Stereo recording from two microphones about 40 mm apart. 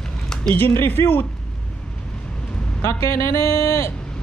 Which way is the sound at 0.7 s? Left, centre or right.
Left.